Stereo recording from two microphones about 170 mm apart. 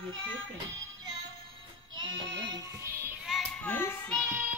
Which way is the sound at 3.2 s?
5° left (ahead or behind).